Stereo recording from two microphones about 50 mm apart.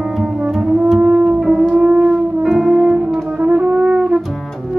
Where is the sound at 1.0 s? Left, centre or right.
Right.